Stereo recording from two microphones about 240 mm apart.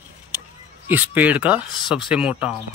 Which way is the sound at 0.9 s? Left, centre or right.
Centre.